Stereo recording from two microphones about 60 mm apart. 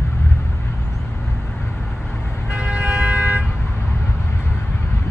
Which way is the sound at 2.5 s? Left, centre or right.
Centre.